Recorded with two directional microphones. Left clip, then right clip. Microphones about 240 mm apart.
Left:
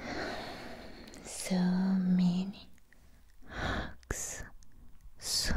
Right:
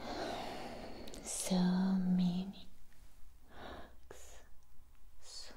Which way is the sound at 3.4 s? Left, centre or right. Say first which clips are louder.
Left 14 dB; left.